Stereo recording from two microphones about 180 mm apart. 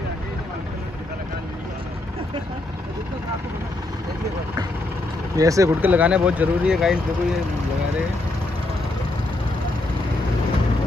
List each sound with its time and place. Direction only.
5.3 s speech: 20° right (ahead or behind)